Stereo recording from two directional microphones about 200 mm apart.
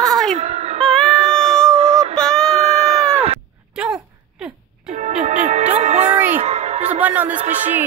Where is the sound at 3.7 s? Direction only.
5° right (ahead or behind).